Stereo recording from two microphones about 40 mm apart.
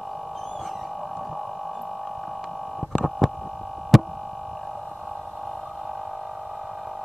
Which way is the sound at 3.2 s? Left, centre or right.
Centre.